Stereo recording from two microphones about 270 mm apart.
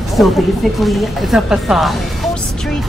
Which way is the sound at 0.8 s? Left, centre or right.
Centre.